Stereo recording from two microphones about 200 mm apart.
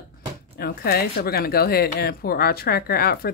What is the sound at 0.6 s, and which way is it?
Speech, 50° left (ahead or behind).